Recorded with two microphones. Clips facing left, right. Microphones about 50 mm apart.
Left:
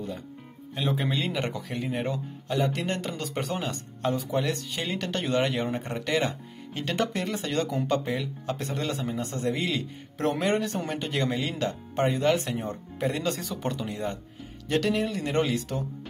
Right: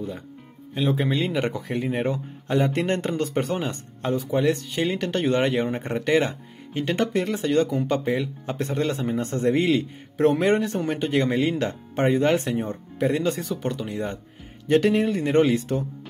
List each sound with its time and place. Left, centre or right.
0.7 s speech: centre
1.4 s a man's voice: centre
2.4 s a man's voice: right
3.5 s speech: centre
8.5 s a man's voice: right
10.4 s a man's voice: centre; by 12.5 s right
12.5 s speech: centre
13.8 s speech: centre
14.7 s a man's voice: right